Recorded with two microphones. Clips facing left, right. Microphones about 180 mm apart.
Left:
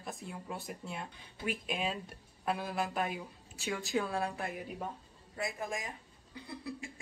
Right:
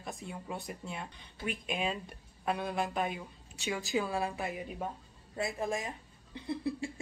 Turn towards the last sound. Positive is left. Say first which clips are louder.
# right 8 dB
turn(degrees=-30)  # may be behind; listen again after turning